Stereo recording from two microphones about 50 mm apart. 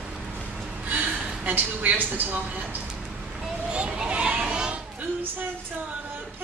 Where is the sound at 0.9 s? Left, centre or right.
Right.